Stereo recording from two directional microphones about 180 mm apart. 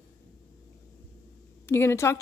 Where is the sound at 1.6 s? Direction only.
15° left (ahead or behind).